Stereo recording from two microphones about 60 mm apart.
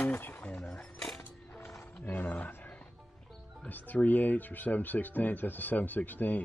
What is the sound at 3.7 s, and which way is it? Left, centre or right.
Speech, left.